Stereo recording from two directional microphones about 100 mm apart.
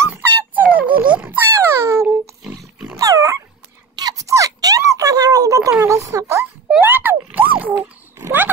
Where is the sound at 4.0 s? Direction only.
40° right (ahead or behind).